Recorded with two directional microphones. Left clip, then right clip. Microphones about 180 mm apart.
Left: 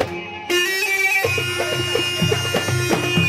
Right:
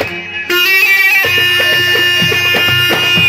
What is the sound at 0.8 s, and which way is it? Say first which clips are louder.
Music: right 10 dB; 70° left (ahead or behind).